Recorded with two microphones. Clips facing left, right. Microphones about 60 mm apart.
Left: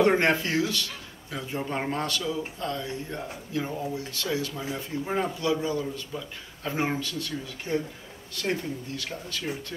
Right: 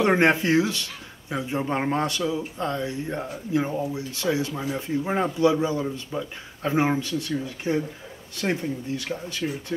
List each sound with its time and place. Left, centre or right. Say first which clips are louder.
0.0 s speech: right 2 dB; right